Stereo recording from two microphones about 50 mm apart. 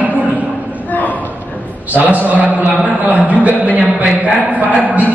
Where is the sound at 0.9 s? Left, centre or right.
Left.